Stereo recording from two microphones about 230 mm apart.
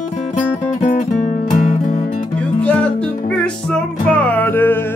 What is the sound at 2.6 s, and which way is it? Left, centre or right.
Music, centre.